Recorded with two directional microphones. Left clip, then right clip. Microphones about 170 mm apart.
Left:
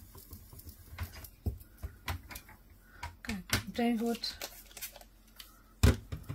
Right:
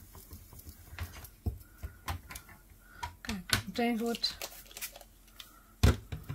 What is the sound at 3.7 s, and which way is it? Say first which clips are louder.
Speech: right 1 dB; 15° right (ahead or behind).